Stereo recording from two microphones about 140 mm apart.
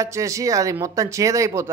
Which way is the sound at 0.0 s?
20° right (ahead or behind).